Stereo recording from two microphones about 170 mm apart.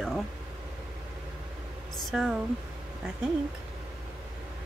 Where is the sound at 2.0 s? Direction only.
Centre (ahead or behind).